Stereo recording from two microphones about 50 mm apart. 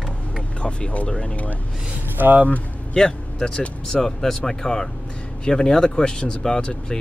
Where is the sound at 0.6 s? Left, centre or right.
Left.